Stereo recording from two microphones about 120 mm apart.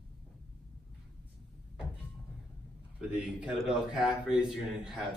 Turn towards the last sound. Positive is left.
turn(degrees=-5)  # may be behind; listen again after turning